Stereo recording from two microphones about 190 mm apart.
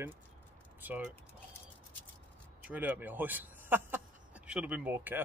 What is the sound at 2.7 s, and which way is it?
Speech, 10° right (ahead or behind).